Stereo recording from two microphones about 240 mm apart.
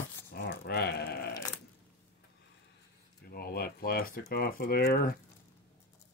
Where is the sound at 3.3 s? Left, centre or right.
Left.